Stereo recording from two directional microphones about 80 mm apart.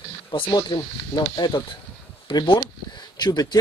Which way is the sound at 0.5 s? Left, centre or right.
Left.